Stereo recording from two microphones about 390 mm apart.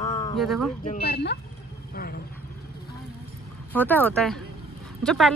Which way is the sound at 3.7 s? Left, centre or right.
Centre.